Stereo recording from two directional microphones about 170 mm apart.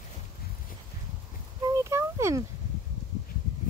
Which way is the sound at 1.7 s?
15° right (ahead or behind).